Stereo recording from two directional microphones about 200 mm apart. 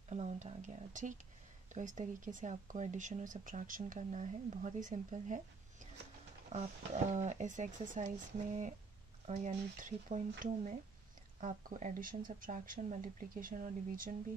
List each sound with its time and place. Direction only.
0.1 s speech: 35° right (ahead or behind)
6.5 s speech: 35° right (ahead or behind)
9.2 s speech: 35° right (ahead or behind)